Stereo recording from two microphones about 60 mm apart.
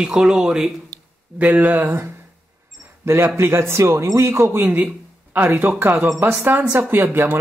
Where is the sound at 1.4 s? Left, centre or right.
Right.